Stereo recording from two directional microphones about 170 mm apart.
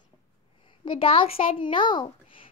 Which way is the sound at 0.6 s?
30° left (ahead or behind).